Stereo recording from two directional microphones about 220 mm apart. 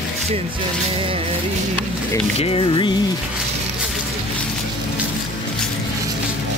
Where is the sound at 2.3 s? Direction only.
25° left (ahead or behind).